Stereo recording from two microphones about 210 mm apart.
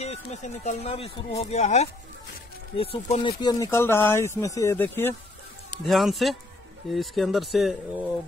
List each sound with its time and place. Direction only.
0.0 s speech: 30° left (ahead or behind); by 7.7 s centre (ahead or behind)